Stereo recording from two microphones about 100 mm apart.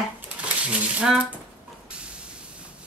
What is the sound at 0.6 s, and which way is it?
Speech, 15° right (ahead or behind).